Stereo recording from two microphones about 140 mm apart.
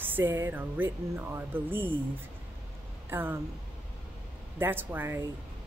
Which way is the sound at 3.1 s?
15° right (ahead or behind).